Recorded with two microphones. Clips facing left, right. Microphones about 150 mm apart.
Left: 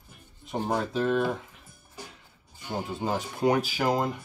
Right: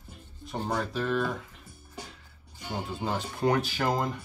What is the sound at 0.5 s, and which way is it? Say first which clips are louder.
Speech: left 3 dB; 15° left (ahead or behind).